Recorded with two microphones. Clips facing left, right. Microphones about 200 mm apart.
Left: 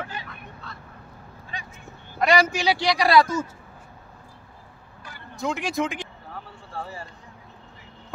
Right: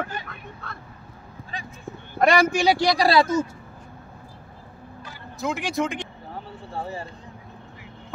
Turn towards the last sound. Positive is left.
turn(degrees=-25)  # may be behind; listen again after turning